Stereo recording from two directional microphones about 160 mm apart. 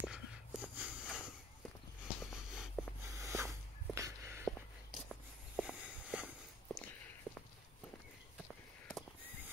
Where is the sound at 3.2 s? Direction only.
20° right (ahead or behind).